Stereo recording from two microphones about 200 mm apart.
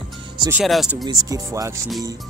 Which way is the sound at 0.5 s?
5° right (ahead or behind).